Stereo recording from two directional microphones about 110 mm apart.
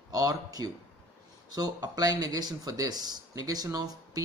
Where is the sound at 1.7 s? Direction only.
35° right (ahead or behind).